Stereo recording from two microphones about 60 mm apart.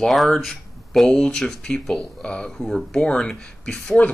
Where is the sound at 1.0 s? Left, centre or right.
Centre.